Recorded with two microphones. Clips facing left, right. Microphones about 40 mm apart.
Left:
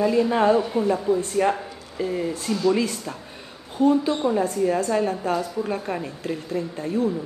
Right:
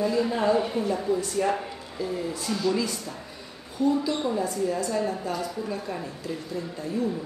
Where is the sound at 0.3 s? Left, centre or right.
Left.